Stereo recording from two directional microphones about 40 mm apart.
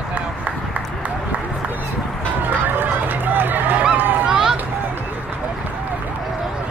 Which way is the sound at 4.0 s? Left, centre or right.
Right.